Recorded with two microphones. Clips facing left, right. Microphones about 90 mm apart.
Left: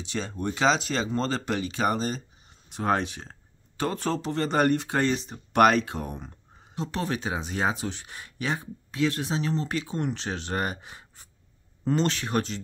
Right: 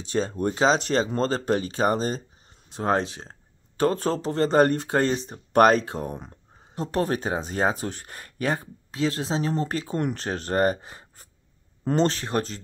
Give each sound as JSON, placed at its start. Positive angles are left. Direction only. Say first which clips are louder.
{"t": 0.0, "sound": "speech", "louder": "right 6 dB", "side_deg": -40}
{"t": 3.7, "sound": "speech", "louder": "right 5 dB", "side_deg": -40}
{"t": 6.1, "sound": "speech", "louder": "right 2 dB", "side_deg": -45}
{"t": 8.9, "sound": "speech", "louder": "right 1 dB", "side_deg": -30}